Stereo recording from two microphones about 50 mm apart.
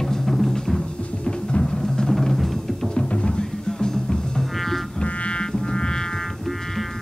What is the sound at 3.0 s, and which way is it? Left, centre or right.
Music, left.